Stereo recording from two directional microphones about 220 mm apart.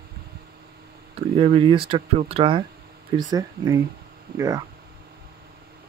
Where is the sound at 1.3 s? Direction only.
25° right (ahead or behind).